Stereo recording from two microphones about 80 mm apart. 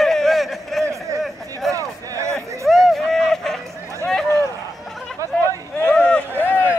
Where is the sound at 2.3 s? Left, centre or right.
Centre.